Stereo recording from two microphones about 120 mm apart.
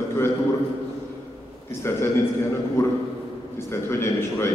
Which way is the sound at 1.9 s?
20° left (ahead or behind).